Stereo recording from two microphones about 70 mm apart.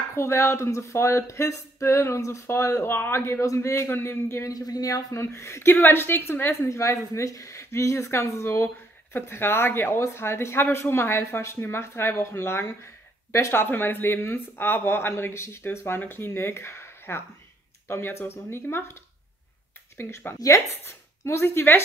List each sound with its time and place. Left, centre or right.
0.1 s a woman's voice: left
4.5 s speech: left
5.2 s a woman's voice: left
6.7 s a woman's voice: left
20.0 s a woman's voice: left
20.3 s speech: left
20.8 s a woman's voice: left